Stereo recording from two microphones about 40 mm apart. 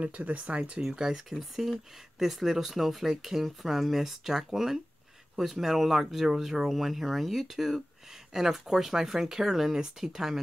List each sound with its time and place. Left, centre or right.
0.0 s speech: right
0.9 s speech: centre